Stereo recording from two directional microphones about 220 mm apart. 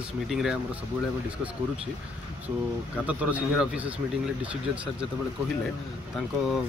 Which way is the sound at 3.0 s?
5° right (ahead or behind).